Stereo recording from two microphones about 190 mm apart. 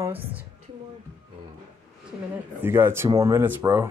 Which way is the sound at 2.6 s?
10° right (ahead or behind).